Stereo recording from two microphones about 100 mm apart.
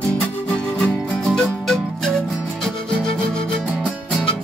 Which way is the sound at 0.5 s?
10° left (ahead or behind).